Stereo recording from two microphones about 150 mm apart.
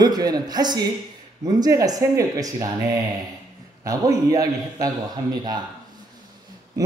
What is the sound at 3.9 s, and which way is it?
Speech, 25° right (ahead or behind).